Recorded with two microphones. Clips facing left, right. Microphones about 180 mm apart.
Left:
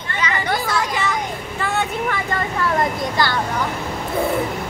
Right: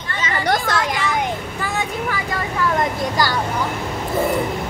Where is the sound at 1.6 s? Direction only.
5° right (ahead or behind).